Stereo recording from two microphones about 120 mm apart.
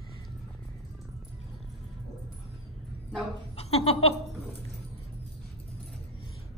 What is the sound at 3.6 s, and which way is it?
Speech, 60° left (ahead or behind).